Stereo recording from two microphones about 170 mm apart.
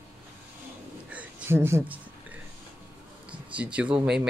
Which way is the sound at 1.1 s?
10° right (ahead or behind).